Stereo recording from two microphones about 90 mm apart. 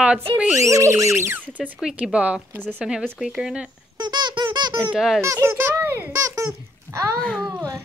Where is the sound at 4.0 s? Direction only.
55° right (ahead or behind).